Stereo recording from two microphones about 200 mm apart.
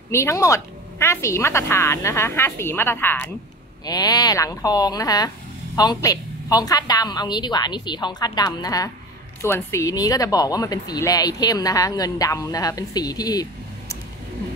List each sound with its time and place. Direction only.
0.1 s a woman's voice: 15° left (ahead or behind)